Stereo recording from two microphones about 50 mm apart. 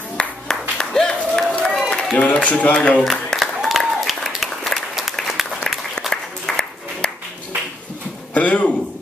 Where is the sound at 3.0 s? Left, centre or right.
Centre.